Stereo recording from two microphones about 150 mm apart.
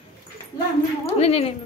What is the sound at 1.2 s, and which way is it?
Speech, 40° left (ahead or behind).